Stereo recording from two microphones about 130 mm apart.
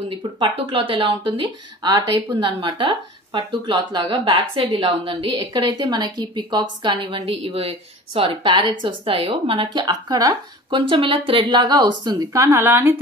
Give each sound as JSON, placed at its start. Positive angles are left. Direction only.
{"t": 0.4, "sound": "speech", "side_deg": -40}